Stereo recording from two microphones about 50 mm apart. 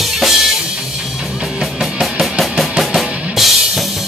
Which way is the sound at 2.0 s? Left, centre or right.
Centre.